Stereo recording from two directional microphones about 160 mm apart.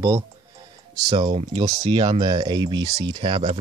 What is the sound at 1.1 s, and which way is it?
Speech, 30° right (ahead or behind).